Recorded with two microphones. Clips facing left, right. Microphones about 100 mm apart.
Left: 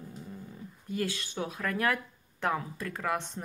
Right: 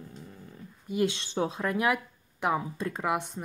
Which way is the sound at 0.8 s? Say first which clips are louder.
Right 5 dB; 20° right (ahead or behind).